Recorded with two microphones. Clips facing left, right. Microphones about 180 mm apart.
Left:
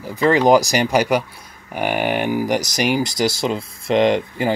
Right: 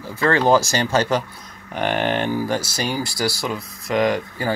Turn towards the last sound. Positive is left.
turn(degrees=25)  # may be behind; listen again after turning